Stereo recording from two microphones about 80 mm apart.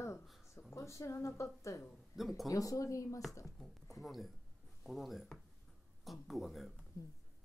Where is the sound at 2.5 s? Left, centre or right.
Left.